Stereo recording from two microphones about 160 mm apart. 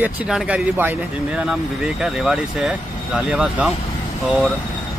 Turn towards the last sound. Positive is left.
turn(degrees=0)  # may be behind; listen again after turning